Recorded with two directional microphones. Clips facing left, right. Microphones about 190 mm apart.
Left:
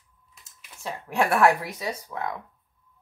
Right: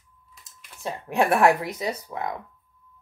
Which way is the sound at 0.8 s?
20° right (ahead or behind).